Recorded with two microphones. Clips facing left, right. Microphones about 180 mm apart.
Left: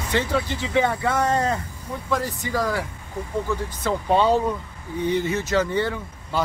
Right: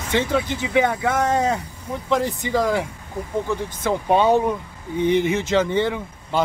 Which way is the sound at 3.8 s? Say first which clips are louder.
Right 2 dB; 15° right (ahead or behind).